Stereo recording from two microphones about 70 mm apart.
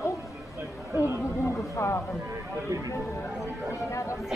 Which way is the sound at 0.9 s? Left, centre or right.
Right.